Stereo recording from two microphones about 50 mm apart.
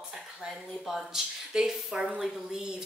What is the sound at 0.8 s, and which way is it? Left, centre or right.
A woman's voice, centre.